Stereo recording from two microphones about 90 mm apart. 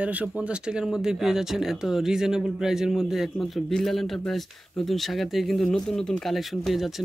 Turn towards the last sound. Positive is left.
turn(degrees=0)  # may be behind; listen again after turning